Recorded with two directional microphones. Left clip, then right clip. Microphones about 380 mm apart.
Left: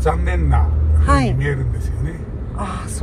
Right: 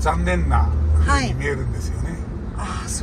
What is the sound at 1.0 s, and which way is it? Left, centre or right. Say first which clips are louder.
Speech: left 4 dB; centre.